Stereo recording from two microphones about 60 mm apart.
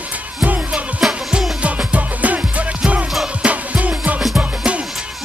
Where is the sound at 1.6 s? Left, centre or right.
Right.